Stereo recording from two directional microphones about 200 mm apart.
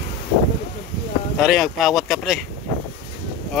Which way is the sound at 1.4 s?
Centre (ahead or behind).